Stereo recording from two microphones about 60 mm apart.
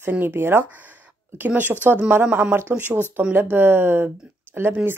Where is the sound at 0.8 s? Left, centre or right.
Right.